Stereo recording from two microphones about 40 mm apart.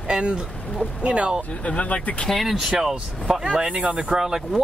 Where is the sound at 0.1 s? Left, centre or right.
Right.